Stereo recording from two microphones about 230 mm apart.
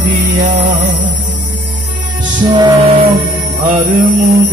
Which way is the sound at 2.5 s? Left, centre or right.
Centre.